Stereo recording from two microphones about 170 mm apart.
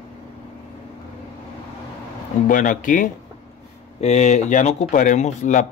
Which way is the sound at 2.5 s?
50° left (ahead or behind).